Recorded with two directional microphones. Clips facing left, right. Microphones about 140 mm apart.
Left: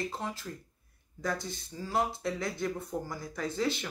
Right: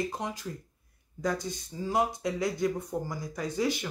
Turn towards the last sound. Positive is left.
turn(degrees=-15)  # may be behind; listen again after turning